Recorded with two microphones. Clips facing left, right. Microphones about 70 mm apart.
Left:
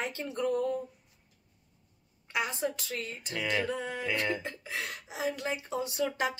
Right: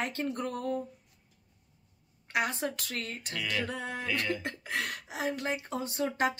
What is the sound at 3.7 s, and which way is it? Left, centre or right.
Speech, right.